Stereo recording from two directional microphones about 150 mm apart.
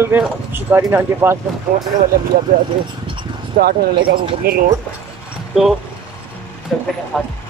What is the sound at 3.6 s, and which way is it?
Speech, 90° right.